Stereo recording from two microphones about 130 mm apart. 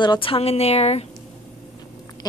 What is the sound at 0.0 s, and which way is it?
Speech, 40° left (ahead or behind).